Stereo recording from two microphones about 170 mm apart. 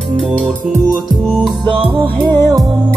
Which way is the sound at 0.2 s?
5° left (ahead or behind).